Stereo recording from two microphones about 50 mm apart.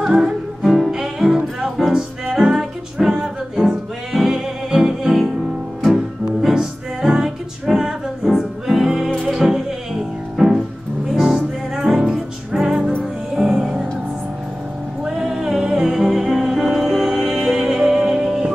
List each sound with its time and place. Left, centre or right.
0.2 s music: centre
15.0 s music: centre